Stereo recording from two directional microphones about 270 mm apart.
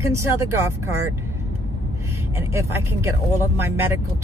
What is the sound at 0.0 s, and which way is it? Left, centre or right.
Speech, centre.